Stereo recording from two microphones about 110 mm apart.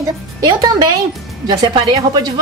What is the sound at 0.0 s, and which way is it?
A woman's voice, 35° right (ahead or behind).